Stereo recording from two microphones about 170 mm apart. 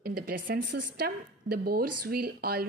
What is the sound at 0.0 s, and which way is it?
Speech, 60° right (ahead or behind).